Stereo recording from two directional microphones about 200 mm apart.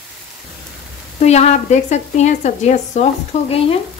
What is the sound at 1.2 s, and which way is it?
Speech, 35° left (ahead or behind).